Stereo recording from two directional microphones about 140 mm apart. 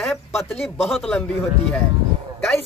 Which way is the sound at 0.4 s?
Centre (ahead or behind).